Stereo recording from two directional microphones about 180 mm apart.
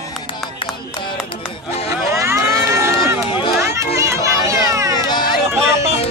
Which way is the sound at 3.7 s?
15° right (ahead or behind).